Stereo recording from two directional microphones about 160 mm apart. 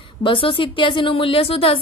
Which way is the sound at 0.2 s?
30° left (ahead or behind).